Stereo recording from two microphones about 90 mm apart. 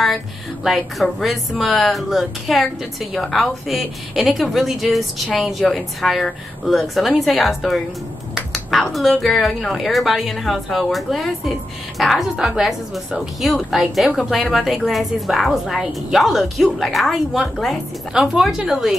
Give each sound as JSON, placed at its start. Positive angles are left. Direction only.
{"t": 0.7, "sound": "a woman's voice", "side_deg": 0}
{"t": 8.4, "sound": "finger snapping", "side_deg": 0}
{"t": 9.2, "sound": "a woman's voice", "side_deg": 0}